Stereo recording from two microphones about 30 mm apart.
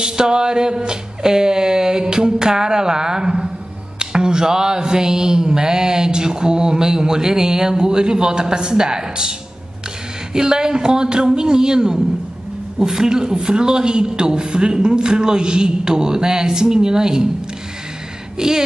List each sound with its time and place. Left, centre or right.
0.0 s a sound: right
4.0 s mantra: right
10.3 s mantra: centre
18.4 s mantra: right